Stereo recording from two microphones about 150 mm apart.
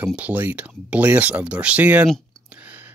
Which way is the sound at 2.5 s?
10° right (ahead or behind).